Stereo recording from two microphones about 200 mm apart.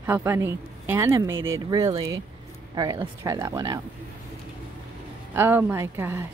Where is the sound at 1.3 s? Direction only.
80° right.